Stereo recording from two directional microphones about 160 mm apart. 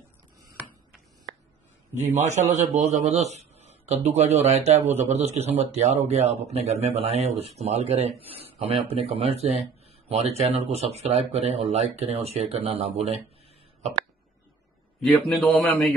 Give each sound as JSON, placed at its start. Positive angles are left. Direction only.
{"t": 2.0, "sound": "a man's voice", "side_deg": -45}
{"t": 15.0, "sound": "a man's voice", "side_deg": 5}